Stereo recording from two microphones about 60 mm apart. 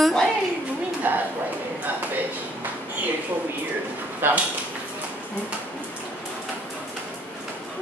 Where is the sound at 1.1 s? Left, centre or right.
Right.